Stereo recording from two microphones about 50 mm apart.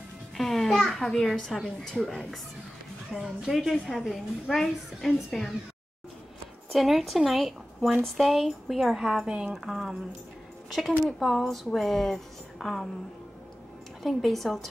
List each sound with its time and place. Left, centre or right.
0.4 s music: centre
0.7 s a child's voice: centre
6.7 s a woman's voice: centre
9.5 s a woman's voice: centre
11.1 s a woman's voice: centre
14.0 s a woman's voice: centre